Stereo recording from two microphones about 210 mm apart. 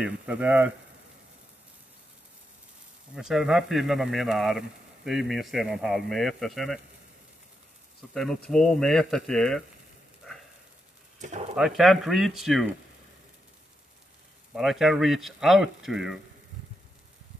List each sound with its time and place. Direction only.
0.0 s speech: 5° right (ahead or behind)
3.2 s speech: centre (ahead or behind)
8.1 s speech: 5° left (ahead or behind)
11.1 s speech: 35° right (ahead or behind)
11.5 s speech: centre (ahead or behind)
14.5 s speech: centre (ahead or behind)